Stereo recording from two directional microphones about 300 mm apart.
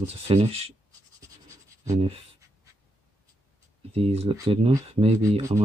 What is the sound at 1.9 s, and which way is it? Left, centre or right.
Speech, centre.